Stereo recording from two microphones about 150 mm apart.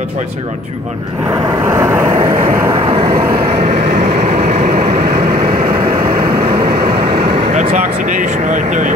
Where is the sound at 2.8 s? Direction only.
35° right (ahead or behind).